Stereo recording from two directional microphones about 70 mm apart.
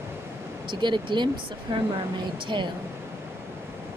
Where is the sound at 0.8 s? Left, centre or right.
Right.